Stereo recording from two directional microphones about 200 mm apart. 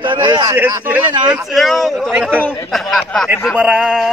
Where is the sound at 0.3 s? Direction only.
15° right (ahead or behind).